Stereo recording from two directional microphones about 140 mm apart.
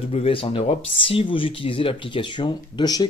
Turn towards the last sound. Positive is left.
turn(degrees=30)  # may be behind; listen again after turning